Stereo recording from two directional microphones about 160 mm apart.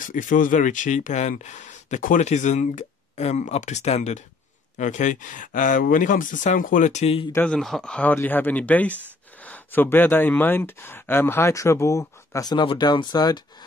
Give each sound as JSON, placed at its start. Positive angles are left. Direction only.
{"t": 0.0, "sound": "speech", "side_deg": 55}
{"t": 7.3, "sound": "speech", "side_deg": 5}